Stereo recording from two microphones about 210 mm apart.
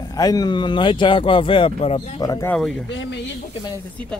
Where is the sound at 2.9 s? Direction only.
60° left (ahead or behind).